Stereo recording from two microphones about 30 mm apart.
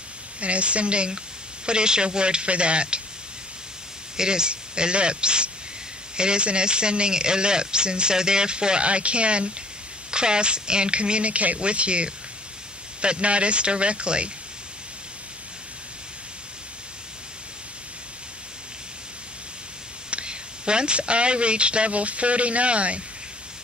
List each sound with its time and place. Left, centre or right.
0.4 s speech: right
4.2 s speech: right
20.1 s speech: right